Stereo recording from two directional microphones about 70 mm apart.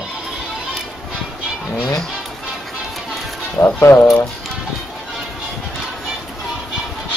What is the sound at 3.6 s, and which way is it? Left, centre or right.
Speech, left.